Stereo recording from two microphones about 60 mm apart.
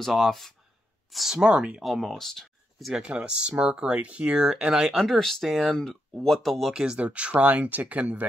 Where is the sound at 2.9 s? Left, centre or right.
Centre.